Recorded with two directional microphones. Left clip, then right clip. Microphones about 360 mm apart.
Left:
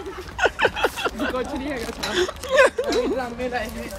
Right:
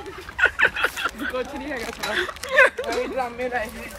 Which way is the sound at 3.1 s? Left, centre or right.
Centre.